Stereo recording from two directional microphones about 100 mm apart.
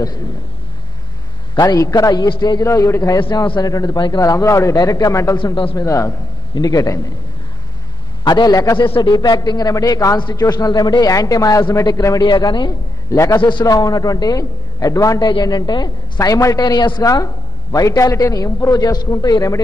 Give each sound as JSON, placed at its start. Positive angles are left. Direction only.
{"t": 1.5, "sound": "a man's voice", "side_deg": 45}
{"t": 1.8, "sound": "a woman's voice", "side_deg": 35}
{"t": 3.3, "sound": "speech", "side_deg": 55}
{"t": 3.6, "sound": "a woman's voice", "side_deg": 40}
{"t": 5.4, "sound": "speech", "side_deg": 55}
{"t": 5.8, "sound": "a woman's voice", "side_deg": 30}
{"t": 8.2, "sound": "a woman's voice", "side_deg": 45}
{"t": 8.9, "sound": "a woman's voice", "side_deg": 55}
{"t": 10.1, "sound": "a woman's voice", "side_deg": 45}
{"t": 13.1, "sound": "a woman's voice", "side_deg": 30}
{"t": 13.4, "sound": "speech", "side_deg": 50}
{"t": 13.7, "sound": "a woman's voice", "side_deg": 40}
{"t": 15.2, "sound": "a woman's voice", "side_deg": 45}